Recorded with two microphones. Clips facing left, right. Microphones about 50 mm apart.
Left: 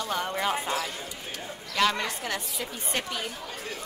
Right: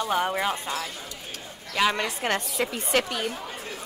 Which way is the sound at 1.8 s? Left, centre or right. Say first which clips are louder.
Right 1 dB; centre.